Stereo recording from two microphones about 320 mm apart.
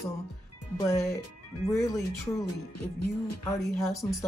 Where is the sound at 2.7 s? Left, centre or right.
Left.